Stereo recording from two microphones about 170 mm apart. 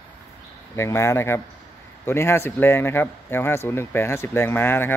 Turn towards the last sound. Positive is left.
turn(degrees=15)  # may be behind; listen again after turning